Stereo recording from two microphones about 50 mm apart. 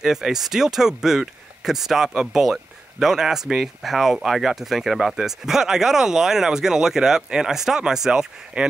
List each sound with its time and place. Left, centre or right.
0.0 s speech: centre
8.6 s speech: centre